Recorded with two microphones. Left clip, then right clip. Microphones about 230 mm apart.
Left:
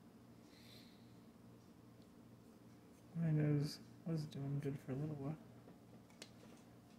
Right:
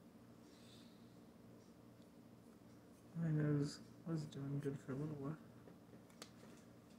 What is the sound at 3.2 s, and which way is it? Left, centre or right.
Speech, left.